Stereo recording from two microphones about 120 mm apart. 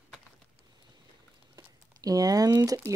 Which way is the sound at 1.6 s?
30° right (ahead or behind).